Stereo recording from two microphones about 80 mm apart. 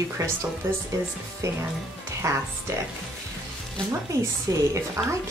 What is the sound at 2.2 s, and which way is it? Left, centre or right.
Speech, right.